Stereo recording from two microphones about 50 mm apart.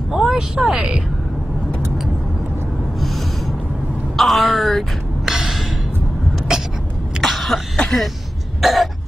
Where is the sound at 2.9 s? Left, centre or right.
Centre.